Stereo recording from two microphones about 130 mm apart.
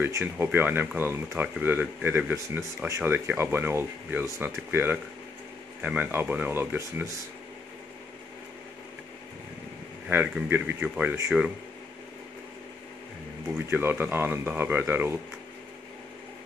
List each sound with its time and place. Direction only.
0.0 s speech: 15° right (ahead or behind)
10.0 s speech: 10° right (ahead or behind)
13.5 s speech: 15° right (ahead or behind)